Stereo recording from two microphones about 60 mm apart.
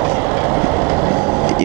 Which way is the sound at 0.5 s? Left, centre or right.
Right.